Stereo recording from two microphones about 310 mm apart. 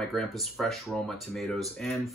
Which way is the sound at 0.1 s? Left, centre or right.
Centre.